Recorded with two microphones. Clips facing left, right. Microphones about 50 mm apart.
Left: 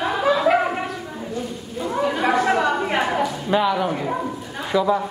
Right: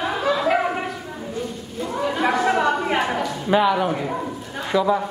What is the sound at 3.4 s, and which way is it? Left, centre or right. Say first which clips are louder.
Speech: right 3 dB; centre.